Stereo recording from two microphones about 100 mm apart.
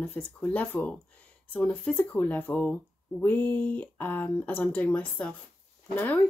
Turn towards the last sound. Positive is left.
turn(degrees=20)  # may be behind; listen again after turning